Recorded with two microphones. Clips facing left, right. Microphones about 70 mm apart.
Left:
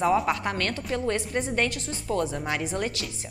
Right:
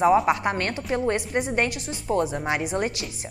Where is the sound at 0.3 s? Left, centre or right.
Right.